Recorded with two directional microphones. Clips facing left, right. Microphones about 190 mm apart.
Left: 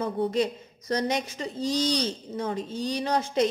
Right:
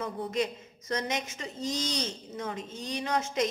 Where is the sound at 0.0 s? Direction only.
35° left (ahead or behind).